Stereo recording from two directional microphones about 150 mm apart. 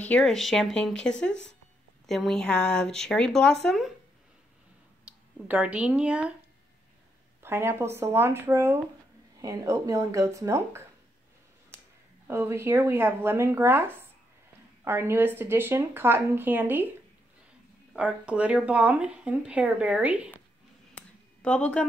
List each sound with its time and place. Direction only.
0.0 s speech: 5° left (ahead or behind)
5.0 s speech: 10° right (ahead or behind)
7.4 s speech: 15° right (ahead or behind)
12.3 s speech: 15° right (ahead or behind)
17.9 s speech: 5° right (ahead or behind)
20.9 s a sound: 5° left (ahead or behind)